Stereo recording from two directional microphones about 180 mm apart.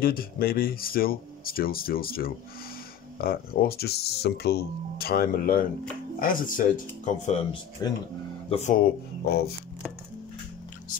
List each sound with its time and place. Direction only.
0.0 s speech: 55° left (ahead or behind)
7.8 s speech: 20° left (ahead or behind)
8.5 s speech: 40° left (ahead or behind); by 9.5 s 60° left (ahead or behind)